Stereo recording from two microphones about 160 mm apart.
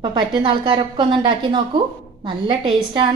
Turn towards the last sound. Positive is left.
turn(degrees=-30)  # may be behind; listen again after turning